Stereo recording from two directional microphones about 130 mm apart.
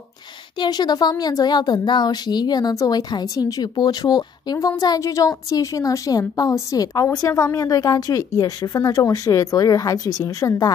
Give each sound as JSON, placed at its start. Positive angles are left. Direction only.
{"t": 0.6, "sound": "a woman's voice", "side_deg": 30}